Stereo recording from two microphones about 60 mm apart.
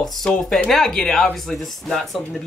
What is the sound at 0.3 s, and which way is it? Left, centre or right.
Speech, centre.